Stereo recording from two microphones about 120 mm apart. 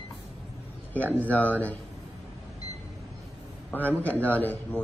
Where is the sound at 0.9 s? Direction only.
15° right (ahead or behind).